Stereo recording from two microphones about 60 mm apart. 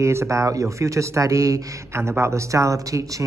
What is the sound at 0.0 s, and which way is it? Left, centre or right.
Speech, right.